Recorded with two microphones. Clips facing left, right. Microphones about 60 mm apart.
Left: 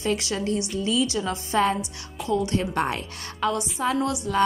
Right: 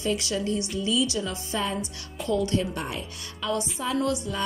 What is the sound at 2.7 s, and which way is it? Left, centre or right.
Speech, left.